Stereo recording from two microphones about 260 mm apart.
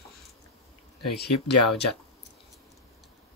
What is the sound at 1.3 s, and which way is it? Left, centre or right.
Speech, left.